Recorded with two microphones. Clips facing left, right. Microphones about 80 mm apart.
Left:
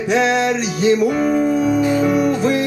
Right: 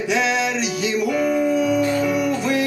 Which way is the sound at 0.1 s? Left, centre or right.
Left.